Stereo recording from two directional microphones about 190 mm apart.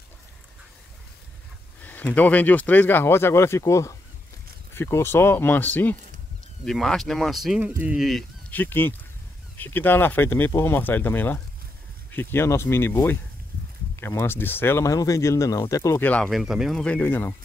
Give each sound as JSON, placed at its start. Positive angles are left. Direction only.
{"t": 1.8, "sound": "speech", "side_deg": 10}